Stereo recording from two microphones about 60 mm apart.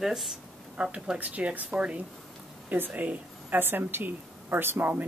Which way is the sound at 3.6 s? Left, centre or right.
Right.